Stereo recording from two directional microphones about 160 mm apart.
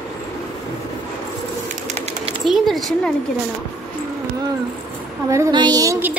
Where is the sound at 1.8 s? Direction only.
40° right (ahead or behind).